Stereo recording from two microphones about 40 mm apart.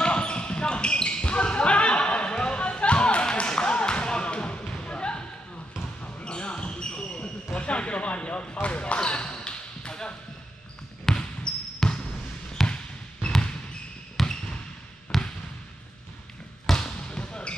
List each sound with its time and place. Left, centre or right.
0.0 s basketball bounce: left
6.2 s basketball bounce: left
12.6 s basketball bounce: centre
14.2 s basketball bounce: centre
16.6 s basketball bounce: centre